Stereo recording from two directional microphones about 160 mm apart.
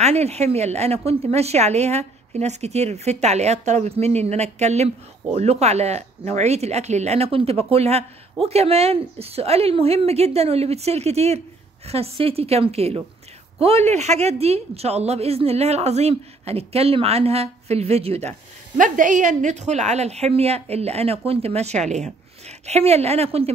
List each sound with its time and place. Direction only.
0.0 s a woman's voice: 40° right (ahead or behind)
18.8 s a woman's voice: 55° right (ahead or behind)